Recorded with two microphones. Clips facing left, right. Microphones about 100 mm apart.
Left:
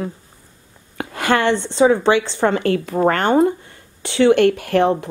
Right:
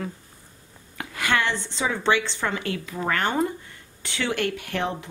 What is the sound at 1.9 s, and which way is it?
Speech, 20° left (ahead or behind).